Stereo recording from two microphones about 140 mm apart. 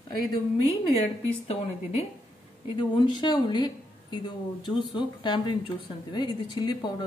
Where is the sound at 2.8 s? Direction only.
30° left (ahead or behind).